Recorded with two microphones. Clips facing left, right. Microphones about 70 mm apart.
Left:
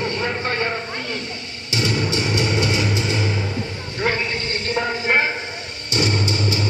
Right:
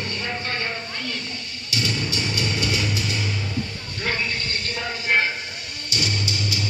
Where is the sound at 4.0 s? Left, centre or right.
Left.